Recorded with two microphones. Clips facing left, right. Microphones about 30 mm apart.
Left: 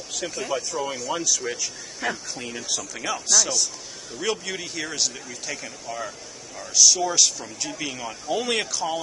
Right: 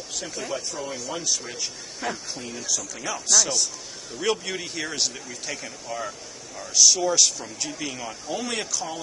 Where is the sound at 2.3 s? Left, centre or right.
Left.